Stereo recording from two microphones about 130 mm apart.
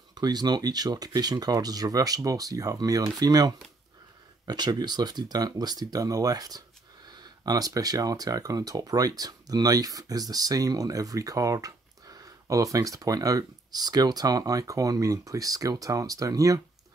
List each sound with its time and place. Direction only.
0.1 s speech: 30° right (ahead or behind)